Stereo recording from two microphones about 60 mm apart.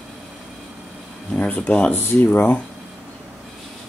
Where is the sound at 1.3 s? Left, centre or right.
Left.